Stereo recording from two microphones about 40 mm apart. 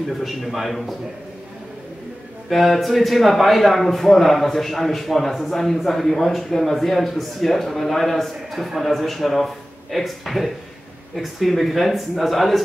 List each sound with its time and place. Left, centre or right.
0.2 s speech: centre
2.5 s speech: centre